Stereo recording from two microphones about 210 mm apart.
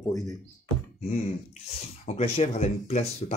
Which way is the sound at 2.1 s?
30° left (ahead or behind).